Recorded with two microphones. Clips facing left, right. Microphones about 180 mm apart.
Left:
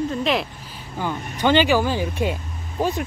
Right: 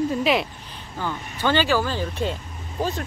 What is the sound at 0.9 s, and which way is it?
Speech, 15° left (ahead or behind).